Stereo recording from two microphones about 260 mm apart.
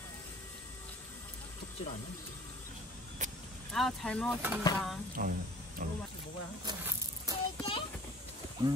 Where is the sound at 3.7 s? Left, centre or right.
Centre.